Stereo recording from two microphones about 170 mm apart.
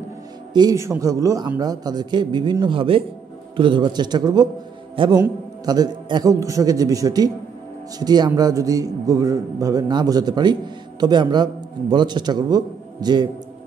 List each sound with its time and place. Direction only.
0.5 s a man's voice: 25° right (ahead or behind)